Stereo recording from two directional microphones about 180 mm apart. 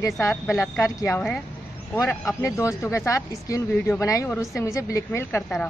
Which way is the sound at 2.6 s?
15° left (ahead or behind).